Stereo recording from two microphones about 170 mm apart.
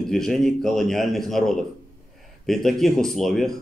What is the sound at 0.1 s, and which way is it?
Speech, centre (ahead or behind).